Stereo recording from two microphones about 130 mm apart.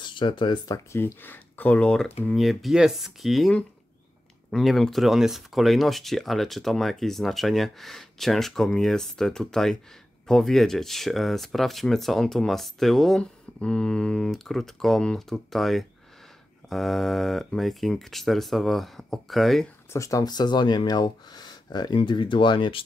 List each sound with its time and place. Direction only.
0.0 s speech: 40° left (ahead or behind)
0.9 s speech: 15° left (ahead or behind); by 19.7 s centre (ahead or behind)
19.9 s speech: 25° left (ahead or behind)